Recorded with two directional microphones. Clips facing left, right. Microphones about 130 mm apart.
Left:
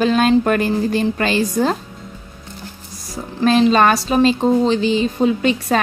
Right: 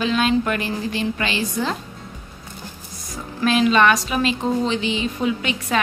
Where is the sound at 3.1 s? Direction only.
35° left (ahead or behind).